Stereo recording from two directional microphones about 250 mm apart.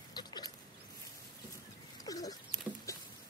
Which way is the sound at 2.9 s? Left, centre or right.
Centre.